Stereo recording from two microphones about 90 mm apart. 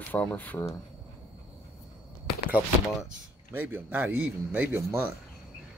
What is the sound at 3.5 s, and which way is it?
Speech, 20° right (ahead or behind).